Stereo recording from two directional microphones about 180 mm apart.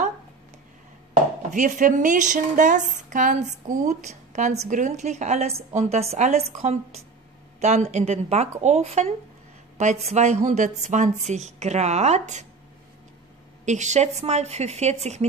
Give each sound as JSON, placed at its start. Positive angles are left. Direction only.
{"t": 1.5, "sound": "a woman's voice", "side_deg": -45}
{"t": 13.7, "sound": "a woman's voice", "side_deg": -40}